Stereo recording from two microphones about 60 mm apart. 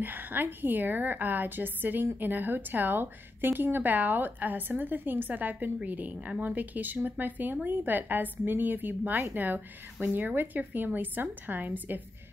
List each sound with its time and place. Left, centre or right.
0.0 s speech: right